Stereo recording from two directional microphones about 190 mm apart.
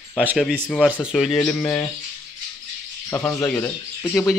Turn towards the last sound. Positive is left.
turn(degrees=15)  # may be behind; listen again after turning